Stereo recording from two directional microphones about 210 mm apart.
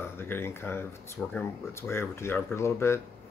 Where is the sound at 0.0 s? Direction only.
10° left (ahead or behind).